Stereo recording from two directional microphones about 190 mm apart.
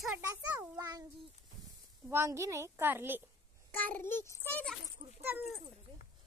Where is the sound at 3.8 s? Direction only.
10° left (ahead or behind).